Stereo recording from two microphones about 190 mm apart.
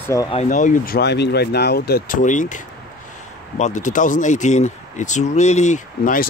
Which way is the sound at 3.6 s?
40° left (ahead or behind).